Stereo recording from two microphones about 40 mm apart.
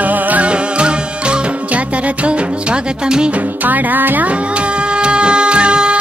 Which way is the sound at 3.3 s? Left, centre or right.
Right.